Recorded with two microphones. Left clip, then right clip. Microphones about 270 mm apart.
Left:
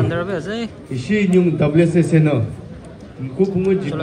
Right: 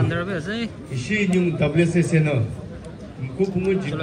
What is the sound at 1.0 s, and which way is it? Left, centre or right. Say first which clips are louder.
A man's voice: left 5 dB; centre.